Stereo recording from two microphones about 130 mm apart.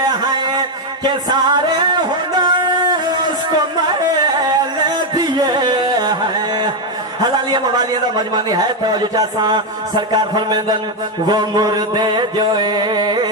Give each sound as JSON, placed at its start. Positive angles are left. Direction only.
{"t": 0.1, "sound": "music", "side_deg": -35}
{"t": 7.2, "sound": "a man's voice", "side_deg": -35}
{"t": 11.2, "sound": "music", "side_deg": -30}